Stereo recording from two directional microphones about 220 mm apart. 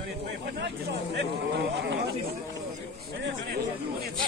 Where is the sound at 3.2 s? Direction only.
45° right (ahead or behind).